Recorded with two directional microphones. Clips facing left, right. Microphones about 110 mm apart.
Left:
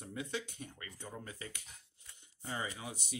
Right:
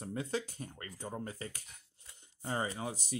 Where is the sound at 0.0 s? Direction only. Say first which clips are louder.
Right 4 dB; 40° right (ahead or behind).